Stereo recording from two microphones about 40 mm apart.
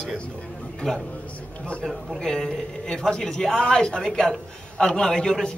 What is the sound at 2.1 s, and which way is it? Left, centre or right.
Speech, centre.